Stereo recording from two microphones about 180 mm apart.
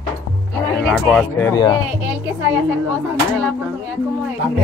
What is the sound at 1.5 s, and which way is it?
Speech, 20° left (ahead or behind).